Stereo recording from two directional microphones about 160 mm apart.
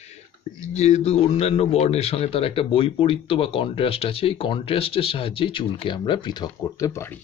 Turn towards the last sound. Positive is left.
turn(degrees=20)  # may be behind; listen again after turning